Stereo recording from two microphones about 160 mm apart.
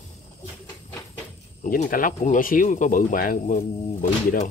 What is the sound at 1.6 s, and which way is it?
Speech, 55° left (ahead or behind).